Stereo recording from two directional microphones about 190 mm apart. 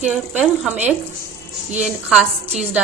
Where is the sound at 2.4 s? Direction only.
35° right (ahead or behind).